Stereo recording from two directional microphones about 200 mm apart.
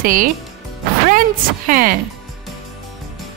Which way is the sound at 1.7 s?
45° right (ahead or behind).